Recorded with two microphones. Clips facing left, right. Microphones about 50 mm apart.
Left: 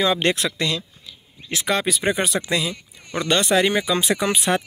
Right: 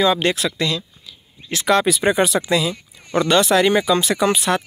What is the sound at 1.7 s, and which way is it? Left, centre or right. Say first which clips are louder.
Speech: right 5 dB; centre.